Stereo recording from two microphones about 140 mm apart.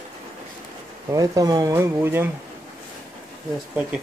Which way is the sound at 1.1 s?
25° right (ahead or behind).